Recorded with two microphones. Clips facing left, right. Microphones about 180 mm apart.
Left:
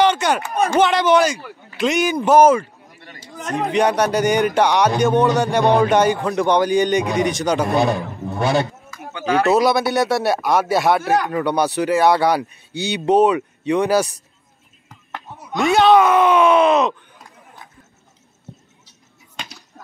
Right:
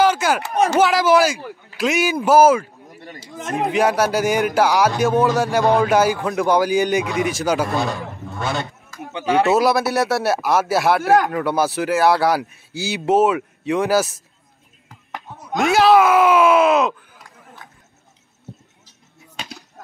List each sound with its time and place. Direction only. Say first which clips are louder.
0.0 s a sound: even; 5° right (ahead or behind)
0.7 s speech: left 1 dB; 5° right (ahead or behind)
3.2 s a man's voice: left 1 dB; 25° right (ahead or behind)
3.5 s speech: even; 5° right (ahead or behind)
7.6 s a man's voice: left 4 dB; 20° left (ahead or behind)
9.3 s speech: even; centre (ahead or behind)
15.7 s speech: even; 5° right (ahead or behind)